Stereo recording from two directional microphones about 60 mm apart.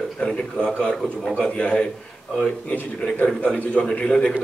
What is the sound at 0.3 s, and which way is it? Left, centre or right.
A man's voice, centre.